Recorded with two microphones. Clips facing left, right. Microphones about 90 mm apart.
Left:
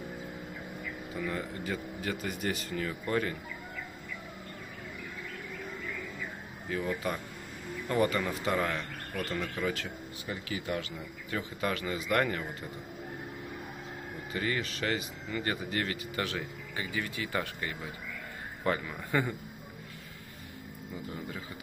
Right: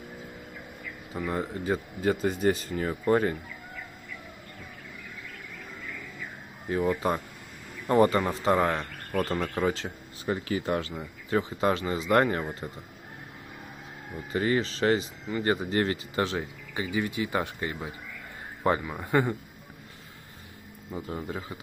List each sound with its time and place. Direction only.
1.1 s speech: 30° right (ahead or behind)
6.7 s speech: 30° right (ahead or behind)
14.3 s speech: 30° right (ahead or behind)